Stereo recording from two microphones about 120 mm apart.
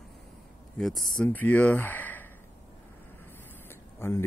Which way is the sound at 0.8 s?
Centre (ahead or behind).